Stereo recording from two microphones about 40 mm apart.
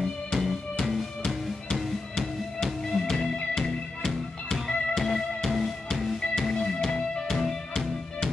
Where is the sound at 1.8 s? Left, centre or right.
Centre.